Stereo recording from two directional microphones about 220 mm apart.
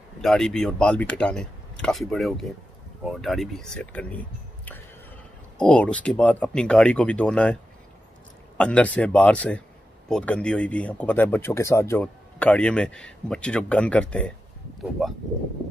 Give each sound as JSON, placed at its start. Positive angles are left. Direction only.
{"t": 0.2, "sound": "speech", "side_deg": 0}
{"t": 5.6, "sound": "speech", "side_deg": 5}
{"t": 8.5, "sound": "speech", "side_deg": 5}